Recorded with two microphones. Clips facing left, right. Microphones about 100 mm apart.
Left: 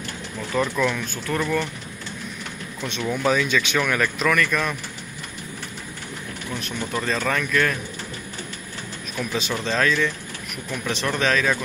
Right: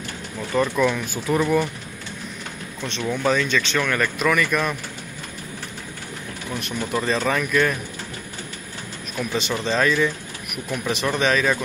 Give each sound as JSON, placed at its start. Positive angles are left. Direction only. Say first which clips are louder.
{"t": 0.5, "sound": "speech", "louder": "right 2 dB", "side_deg": 0}
{"t": 2.8, "sound": "speech", "louder": "even", "side_deg": 5}
{"t": 6.5, "sound": "speech", "louder": "right 3 dB", "side_deg": 0}
{"t": 9.1, "sound": "speech", "louder": "right 2 dB", "side_deg": 0}